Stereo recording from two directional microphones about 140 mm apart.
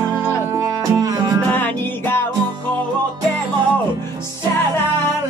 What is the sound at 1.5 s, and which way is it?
Music, 15° left (ahead or behind).